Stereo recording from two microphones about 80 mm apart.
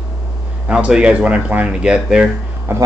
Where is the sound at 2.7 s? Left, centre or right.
Right.